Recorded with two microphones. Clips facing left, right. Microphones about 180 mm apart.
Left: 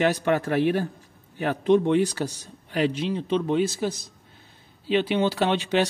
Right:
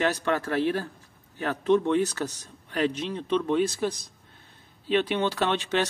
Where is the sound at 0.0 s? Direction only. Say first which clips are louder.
Left 4 dB; 15° left (ahead or behind).